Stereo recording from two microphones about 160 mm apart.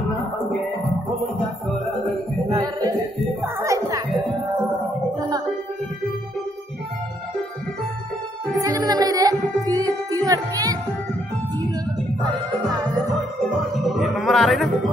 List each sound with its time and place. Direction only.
2.6 s a sound: 25° right (ahead or behind)
3.5 s music: 20° right (ahead or behind)
8.5 s music: 20° right (ahead or behind)
12.2 s music: 25° right (ahead or behind)
14.1 s music: centre (ahead or behind)